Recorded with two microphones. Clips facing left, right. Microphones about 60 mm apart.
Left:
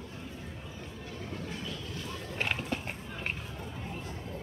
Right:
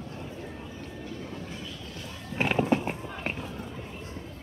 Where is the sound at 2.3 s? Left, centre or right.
Centre.